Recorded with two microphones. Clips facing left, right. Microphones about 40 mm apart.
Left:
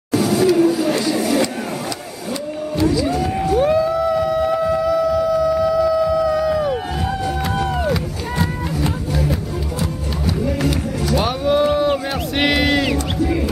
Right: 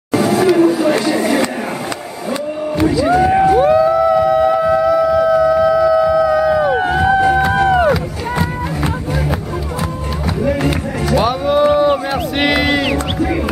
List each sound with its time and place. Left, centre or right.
0.1 s chatter: right
2.8 s music: right
3.5 s a sound: centre
6.8 s music: right
7.5 s run: right
10.4 s music: right
11.1 s a sound: centre
12.9 s music: right